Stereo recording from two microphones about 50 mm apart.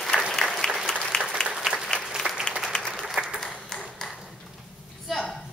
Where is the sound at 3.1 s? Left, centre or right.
Centre.